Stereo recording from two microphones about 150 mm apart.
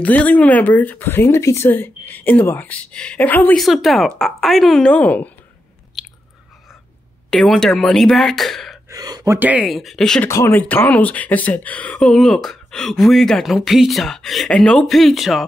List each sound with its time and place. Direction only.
0.0 s speech: 10° left (ahead or behind)
3.6 s speech: centre (ahead or behind)
7.2 s speech: 5° left (ahead or behind)
8.9 s speech: 25° right (ahead or behind)
9.7 s speech: centre (ahead or behind)
10.2 s speech: 15° left (ahead or behind); by 15.4 s centre (ahead or behind)